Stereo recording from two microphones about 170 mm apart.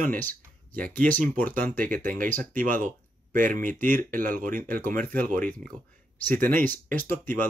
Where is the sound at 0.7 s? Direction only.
10° left (ahead or behind).